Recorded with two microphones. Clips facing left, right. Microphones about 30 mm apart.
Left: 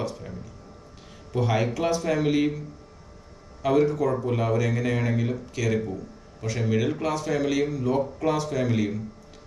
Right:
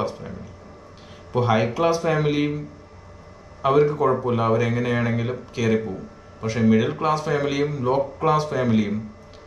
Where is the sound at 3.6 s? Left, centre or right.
Right.